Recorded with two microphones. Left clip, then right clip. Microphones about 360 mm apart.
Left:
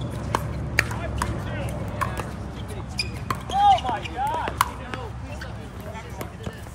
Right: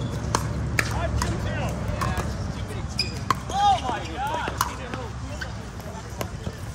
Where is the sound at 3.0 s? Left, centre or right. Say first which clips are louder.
Right 3 dB; left.